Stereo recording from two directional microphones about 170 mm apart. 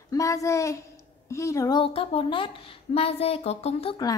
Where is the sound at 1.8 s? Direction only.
35° left (ahead or behind).